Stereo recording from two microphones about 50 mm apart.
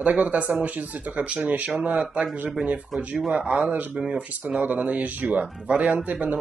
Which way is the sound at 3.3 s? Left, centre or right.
Right.